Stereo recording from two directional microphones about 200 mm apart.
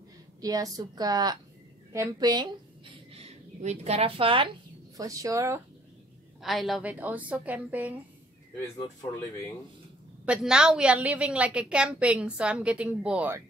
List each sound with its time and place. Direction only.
0.4 s a woman's voice: 20° right (ahead or behind)
4.9 s a woman's voice: 15° right (ahead or behind)
6.4 s a woman's voice: centre (ahead or behind)
10.2 s a woman's voice: 5° right (ahead or behind)